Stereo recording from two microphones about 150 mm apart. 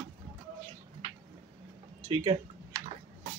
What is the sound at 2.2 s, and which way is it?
Typing, 35° right (ahead or behind).